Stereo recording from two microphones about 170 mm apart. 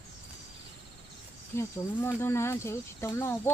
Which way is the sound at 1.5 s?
15° left (ahead or behind).